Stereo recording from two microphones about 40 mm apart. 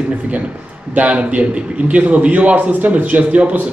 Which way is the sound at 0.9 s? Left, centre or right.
Right.